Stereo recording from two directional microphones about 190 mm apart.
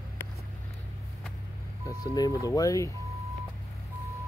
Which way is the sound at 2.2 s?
20° left (ahead or behind).